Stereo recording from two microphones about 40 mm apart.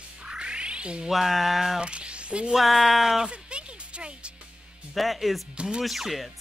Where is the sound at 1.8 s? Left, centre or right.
Right.